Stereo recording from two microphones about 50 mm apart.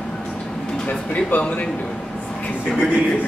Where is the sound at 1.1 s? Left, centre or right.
Left.